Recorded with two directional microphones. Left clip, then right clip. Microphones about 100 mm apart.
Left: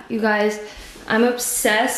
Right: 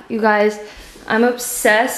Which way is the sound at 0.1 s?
20° right (ahead or behind).